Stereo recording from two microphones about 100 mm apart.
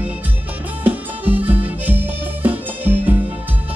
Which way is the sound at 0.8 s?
15° right (ahead or behind).